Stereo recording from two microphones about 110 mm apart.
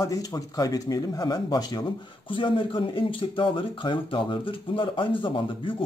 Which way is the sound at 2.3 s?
50° left (ahead or behind).